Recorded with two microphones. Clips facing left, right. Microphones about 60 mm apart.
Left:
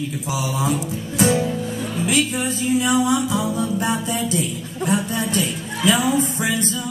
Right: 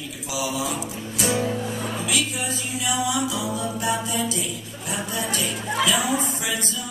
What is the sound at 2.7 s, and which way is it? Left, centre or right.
Music, left.